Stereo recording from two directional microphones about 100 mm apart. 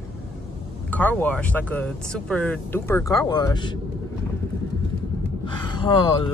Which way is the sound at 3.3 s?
45° left (ahead or behind).